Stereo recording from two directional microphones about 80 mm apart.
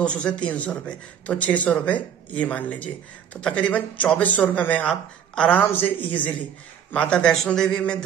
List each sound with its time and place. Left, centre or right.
0.0 s speech: centre